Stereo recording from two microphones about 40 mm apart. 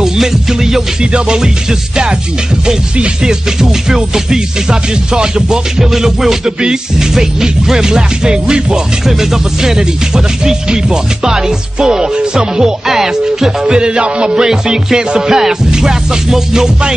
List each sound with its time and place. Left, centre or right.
0.0 s music: centre